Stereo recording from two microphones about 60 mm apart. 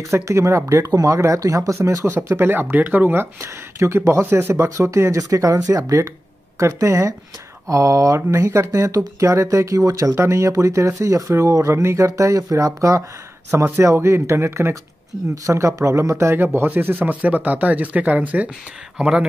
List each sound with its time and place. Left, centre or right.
0.1 s speech: right
0.8 s speech: right
2.2 s speech: right
2.5 s speech: right
3.8 s speech: right
4.2 s speech: right
4.6 s speech: right
10.1 s speech: right
13.7 s speech: right
16.8 s speech: right
18.9 s speech: centre